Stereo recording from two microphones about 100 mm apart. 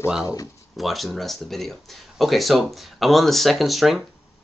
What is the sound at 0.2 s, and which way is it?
Speech, 35° left (ahead or behind).